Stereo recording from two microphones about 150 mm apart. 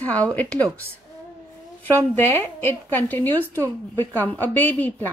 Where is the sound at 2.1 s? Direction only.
15° left (ahead or behind).